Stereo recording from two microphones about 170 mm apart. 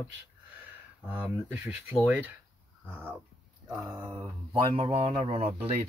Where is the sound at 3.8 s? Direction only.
20° right (ahead or behind).